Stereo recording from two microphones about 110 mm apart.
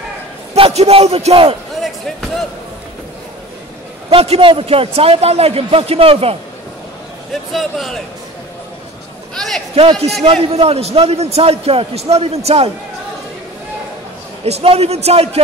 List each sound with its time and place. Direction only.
0.6 s a man's voice: 70° right (ahead or behind)
4.1 s a man's voice: 60° right (ahead or behind)
7.5 s speech: centre (ahead or behind)
9.3 s a man's voice: 5° left (ahead or behind)
10.2 s a man's voice: 65° right (ahead or behind)
14.4 s a man's voice: 65° right (ahead or behind)